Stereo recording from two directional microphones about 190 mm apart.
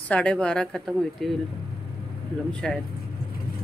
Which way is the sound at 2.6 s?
5° left (ahead or behind).